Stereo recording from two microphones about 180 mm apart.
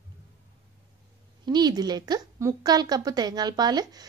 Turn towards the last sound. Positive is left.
turn(degrees=-20)  # may be behind; listen again after turning